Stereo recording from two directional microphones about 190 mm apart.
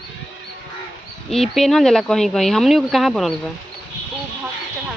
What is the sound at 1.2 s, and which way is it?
Speech, centre (ahead or behind).